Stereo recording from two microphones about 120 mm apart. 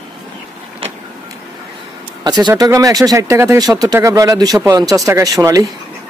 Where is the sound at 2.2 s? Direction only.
35° right (ahead or behind).